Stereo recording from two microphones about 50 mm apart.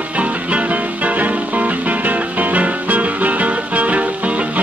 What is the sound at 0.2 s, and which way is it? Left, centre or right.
Music, right.